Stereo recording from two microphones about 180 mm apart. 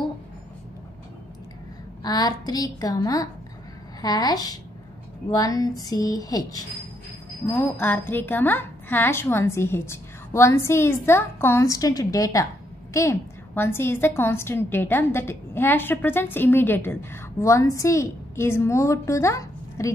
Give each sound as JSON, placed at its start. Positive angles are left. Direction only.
{"t": 2.0, "sound": "a woman's voice", "side_deg": 20}